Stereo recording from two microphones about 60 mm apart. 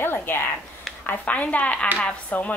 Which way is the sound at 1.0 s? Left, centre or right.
Left.